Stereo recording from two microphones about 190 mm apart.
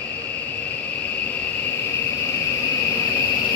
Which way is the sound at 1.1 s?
10° left (ahead or behind).